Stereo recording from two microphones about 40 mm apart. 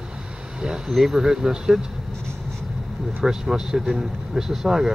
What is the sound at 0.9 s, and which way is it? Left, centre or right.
Speech, centre.